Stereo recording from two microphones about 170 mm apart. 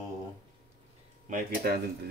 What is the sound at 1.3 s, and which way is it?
Speech, 60° right (ahead or behind).